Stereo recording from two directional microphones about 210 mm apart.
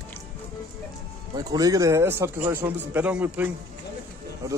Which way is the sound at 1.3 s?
15° right (ahead or behind).